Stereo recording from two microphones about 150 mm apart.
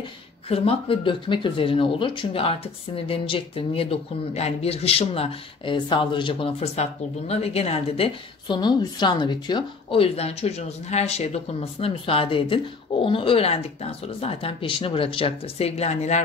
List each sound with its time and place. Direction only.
0.5 s speech: 40° left (ahead or behind)
8.5 s speech: 30° left (ahead or behind); by 16.2 s 50° left (ahead or behind)